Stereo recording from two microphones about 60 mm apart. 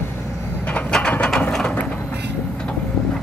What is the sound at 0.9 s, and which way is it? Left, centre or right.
Ratchet, centre.